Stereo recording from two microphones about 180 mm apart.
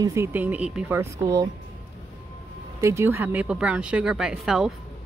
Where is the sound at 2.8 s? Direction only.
15° right (ahead or behind).